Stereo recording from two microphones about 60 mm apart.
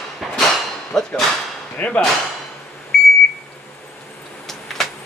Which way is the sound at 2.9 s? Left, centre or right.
Centre.